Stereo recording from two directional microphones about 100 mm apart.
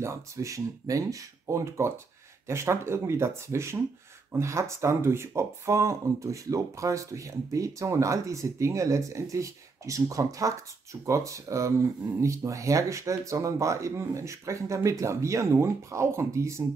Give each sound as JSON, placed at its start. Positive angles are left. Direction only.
{"t": 0.0, "sound": "speech", "side_deg": -30}